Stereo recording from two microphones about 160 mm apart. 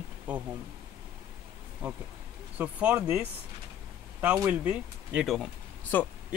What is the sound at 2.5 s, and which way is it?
Speech, 10° right (ahead or behind).